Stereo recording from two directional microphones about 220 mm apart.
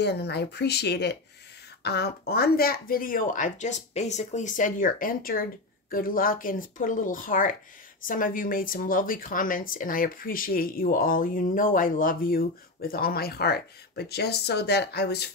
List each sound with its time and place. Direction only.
0.0 s speech: 50° left (ahead or behind)